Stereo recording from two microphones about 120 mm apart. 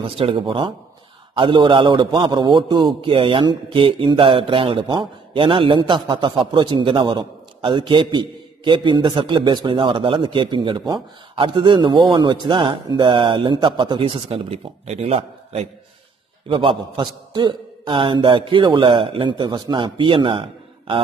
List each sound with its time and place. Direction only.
0.0 s a man's voice: 50° right (ahead or behind)
16.4 s a man's voice: 45° right (ahead or behind)